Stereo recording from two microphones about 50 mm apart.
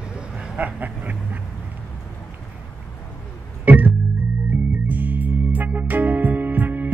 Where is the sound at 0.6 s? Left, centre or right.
Right.